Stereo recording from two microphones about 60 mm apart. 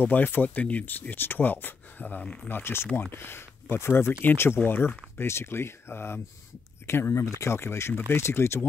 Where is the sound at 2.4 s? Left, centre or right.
Left.